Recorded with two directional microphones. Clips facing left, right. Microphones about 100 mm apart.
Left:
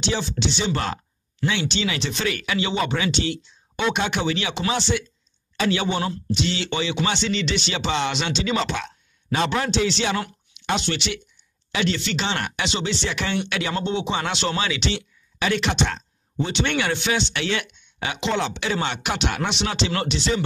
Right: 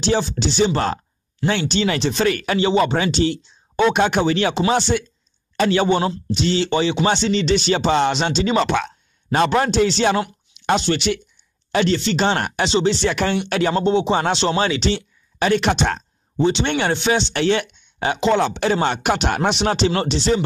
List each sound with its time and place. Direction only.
0.0 s speech: 40° right (ahead or behind)
13.0 s speech: 45° right (ahead or behind)
16.3 s speech: 30° right (ahead or behind)
19.9 s speech: 30° right (ahead or behind)